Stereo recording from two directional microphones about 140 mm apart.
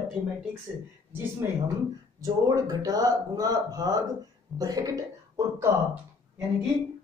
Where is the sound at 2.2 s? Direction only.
25° right (ahead or behind).